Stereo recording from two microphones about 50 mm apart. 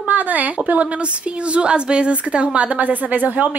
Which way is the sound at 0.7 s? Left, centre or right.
Right.